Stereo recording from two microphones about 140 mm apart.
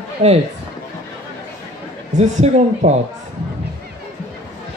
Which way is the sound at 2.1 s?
55° right (ahead or behind).